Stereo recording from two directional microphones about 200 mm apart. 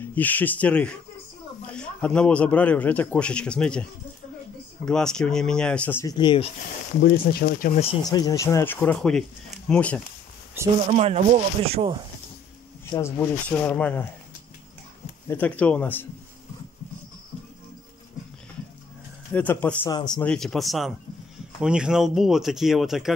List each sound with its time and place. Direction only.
0.0 s a man's voice: 10° left (ahead or behind)
4.8 s a man's voice: 5° left (ahead or behind); by 6.5 s 25° left (ahead or behind)
7.0 s speech: 50° left (ahead or behind)
7.8 s speech: 25° left (ahead or behind); by 10.0 s 5° left (ahead or behind)
10.6 s speech: 10° right (ahead or behind)
10.9 s speech: 30° right (ahead or behind)
13.0 s speech: 10° left (ahead or behind)
15.2 s speech: 10° left (ahead or behind)
19.3 s speech: 10° left (ahead or behind)
19.8 s speech: 20° left (ahead or behind)
20.2 s a man's voice: centre (ahead or behind)